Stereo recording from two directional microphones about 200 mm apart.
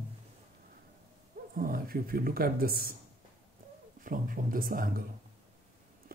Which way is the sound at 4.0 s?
45° right (ahead or behind).